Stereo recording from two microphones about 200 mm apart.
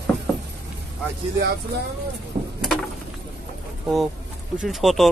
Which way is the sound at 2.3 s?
25° right (ahead or behind).